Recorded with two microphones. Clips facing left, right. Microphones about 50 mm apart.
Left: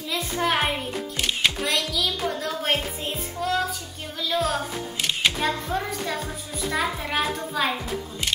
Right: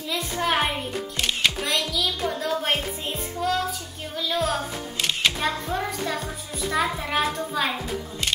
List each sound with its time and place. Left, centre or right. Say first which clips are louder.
0.1 s music: even; centre
4.2 s a child's voice: even; centre